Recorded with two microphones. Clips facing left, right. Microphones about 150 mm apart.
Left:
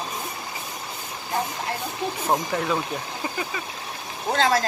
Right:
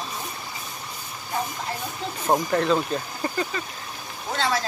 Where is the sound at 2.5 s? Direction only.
10° left (ahead or behind).